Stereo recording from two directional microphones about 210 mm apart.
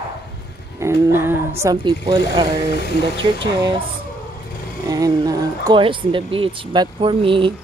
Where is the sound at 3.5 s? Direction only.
20° right (ahead or behind).